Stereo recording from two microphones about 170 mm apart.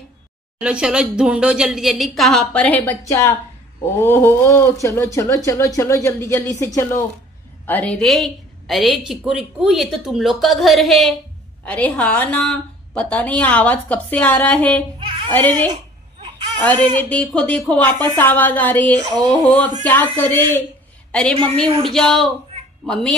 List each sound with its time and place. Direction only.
0.6 s a woman's voice: 5° right (ahead or behind); by 15.5 s 10° left (ahead or behind)
15.7 s a sound: 25° right (ahead or behind)
16.5 s a woman's voice: 10° left (ahead or behind)
21.6 s speech: 30° right (ahead or behind)
21.9 s speech: centre (ahead or behind)